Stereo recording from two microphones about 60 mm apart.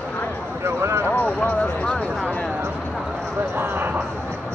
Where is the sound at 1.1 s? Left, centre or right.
Left.